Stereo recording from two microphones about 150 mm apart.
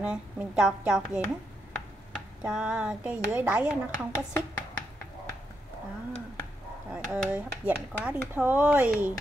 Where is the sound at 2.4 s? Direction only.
5° right (ahead or behind).